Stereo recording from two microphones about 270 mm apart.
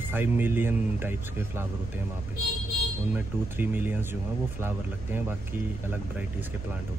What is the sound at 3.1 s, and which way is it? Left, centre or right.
A man's voice, centre.